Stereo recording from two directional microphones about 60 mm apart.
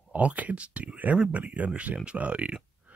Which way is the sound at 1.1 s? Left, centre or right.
Right.